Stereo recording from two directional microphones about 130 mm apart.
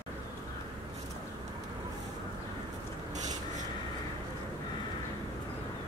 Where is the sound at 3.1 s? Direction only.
65° right (ahead or behind).